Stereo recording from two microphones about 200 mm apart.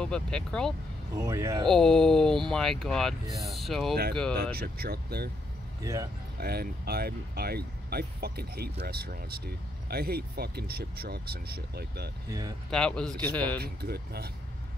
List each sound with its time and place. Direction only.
0.0 s speech: 5° left (ahead or behind)
1.1 s speech: 15° right (ahead or behind)
1.7 s speech: centre (ahead or behind)
4.4 s speech: 50° right (ahead or behind)
6.4 s speech: 50° right (ahead or behind)
12.3 s speech: 15° right (ahead or behind)
12.7 s speech: 5° left (ahead or behind)
13.6 s speech: 50° right (ahead or behind)